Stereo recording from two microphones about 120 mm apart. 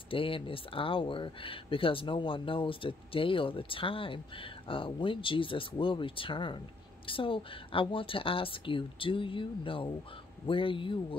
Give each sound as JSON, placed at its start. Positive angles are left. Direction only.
{"t": 0.1, "sound": "speech", "side_deg": 50}